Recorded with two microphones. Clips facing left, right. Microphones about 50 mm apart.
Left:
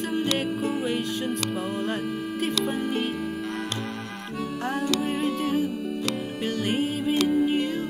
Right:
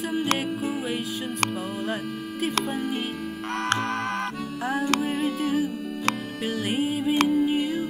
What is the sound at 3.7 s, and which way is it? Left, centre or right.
Music, right.